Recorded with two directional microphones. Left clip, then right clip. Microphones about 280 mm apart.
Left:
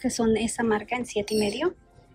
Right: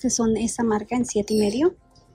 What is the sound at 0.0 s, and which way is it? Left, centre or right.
A woman's voice, centre.